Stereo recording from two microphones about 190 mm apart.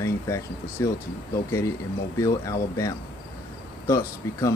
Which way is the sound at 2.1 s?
15° left (ahead or behind).